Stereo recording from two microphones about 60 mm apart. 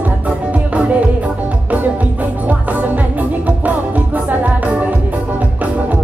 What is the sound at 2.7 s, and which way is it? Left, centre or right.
Music, right.